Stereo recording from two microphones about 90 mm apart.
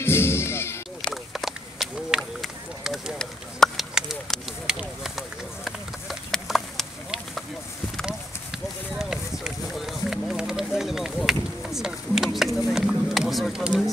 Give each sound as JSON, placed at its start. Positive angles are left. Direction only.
{"t": 0.0, "sound": "music", "side_deg": 25}
{"t": 1.1, "sound": "run", "side_deg": 0}